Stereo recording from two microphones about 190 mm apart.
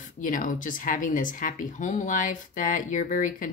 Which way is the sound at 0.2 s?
45° left (ahead or behind).